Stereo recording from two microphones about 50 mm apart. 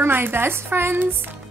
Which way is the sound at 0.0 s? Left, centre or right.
Right.